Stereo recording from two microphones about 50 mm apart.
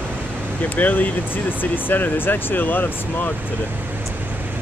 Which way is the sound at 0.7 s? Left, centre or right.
Left.